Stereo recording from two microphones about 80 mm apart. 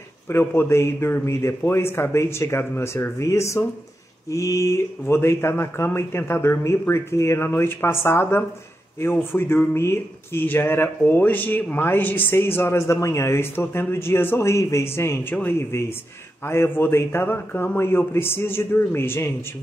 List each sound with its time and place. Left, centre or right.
0.3 s speech: left
16.4 s speech: left